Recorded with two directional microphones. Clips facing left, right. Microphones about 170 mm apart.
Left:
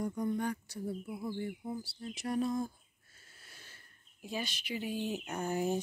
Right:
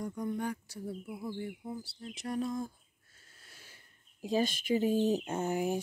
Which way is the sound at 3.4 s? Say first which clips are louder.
Even; 5° right (ahead or behind).